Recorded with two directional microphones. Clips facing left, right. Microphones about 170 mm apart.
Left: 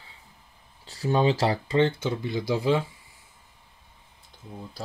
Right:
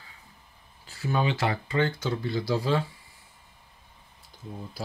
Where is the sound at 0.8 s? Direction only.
35° left (ahead or behind); by 2.8 s 15° left (ahead or behind).